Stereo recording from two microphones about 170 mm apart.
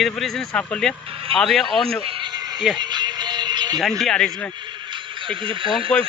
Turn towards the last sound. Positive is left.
turn(degrees=-30)  # may be behind; listen again after turning